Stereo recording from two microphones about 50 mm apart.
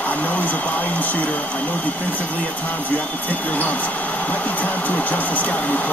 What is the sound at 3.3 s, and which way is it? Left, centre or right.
Speech, left.